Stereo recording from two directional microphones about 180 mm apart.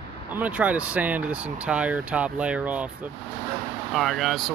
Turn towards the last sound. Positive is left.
turn(degrees=0)  # may be behind; listen again after turning